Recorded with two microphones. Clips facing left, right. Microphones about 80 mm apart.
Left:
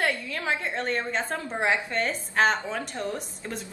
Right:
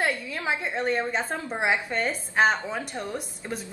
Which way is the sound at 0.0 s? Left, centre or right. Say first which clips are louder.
Even; centre.